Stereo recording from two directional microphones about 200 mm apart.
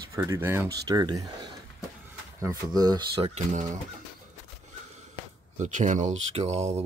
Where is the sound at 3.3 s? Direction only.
40° right (ahead or behind).